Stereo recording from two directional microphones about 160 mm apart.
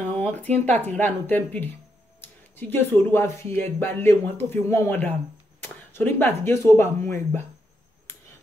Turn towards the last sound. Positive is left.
turn(degrees=15)  # may be behind; listen again after turning